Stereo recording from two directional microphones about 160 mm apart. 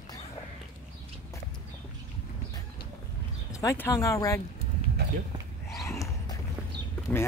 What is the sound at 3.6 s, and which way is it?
Speech, 20° left (ahead or behind).